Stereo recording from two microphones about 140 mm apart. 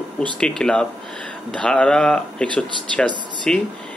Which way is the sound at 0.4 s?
5° left (ahead or behind).